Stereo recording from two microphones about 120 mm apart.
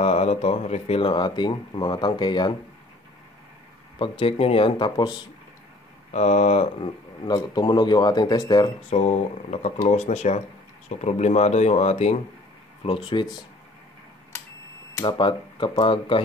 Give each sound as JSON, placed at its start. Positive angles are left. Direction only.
{"t": 0.0, "sound": "speech", "side_deg": 65}
{"t": 4.0, "sound": "speech", "side_deg": 50}
{"t": 6.1, "sound": "speech", "side_deg": 70}
{"t": 7.2, "sound": "speech", "side_deg": 35}
{"t": 8.9, "sound": "speech", "side_deg": 70}
{"t": 12.8, "sound": "speech", "side_deg": 45}
{"t": 15.0, "sound": "speech", "side_deg": 40}